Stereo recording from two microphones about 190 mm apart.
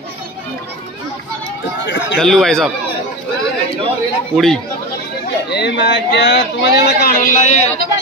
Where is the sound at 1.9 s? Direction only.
70° left (ahead or behind).